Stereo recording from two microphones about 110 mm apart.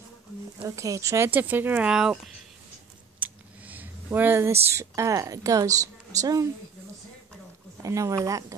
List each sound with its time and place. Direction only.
0.7 s a woman's voice: 30° right (ahead or behind); by 2.3 s 5° right (ahead or behind)
3.2 s a sound: 15° right (ahead or behind)
4.6 s a woman's voice: 25° right (ahead or behind)
7.8 s a woman's voice: 30° right (ahead or behind)